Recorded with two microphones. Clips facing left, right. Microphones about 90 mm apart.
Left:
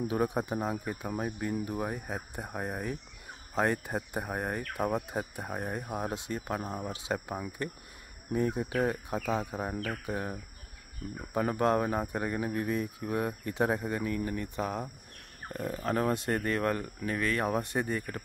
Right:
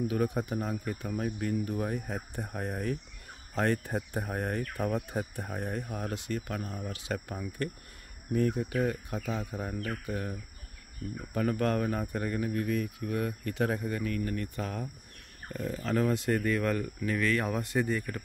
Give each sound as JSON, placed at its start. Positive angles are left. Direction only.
{"t": 0.1, "sound": "speech", "side_deg": 20}
{"t": 11.3, "sound": "speech", "side_deg": 20}